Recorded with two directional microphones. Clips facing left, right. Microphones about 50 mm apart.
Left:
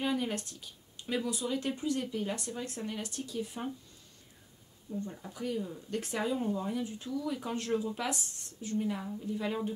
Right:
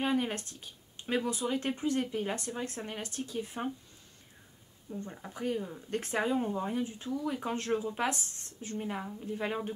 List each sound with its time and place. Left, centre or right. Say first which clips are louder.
0.0 s speech: right 2 dB; right
4.9 s speech: left 1 dB; right